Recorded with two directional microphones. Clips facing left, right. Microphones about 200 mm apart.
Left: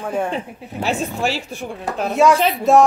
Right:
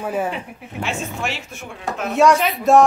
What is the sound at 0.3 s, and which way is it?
Speech, 35° left (ahead or behind).